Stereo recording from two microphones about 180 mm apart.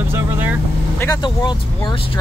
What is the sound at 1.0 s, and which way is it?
Speech, 20° left (ahead or behind).